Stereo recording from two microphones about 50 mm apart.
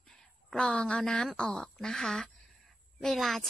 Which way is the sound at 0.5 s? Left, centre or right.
Centre.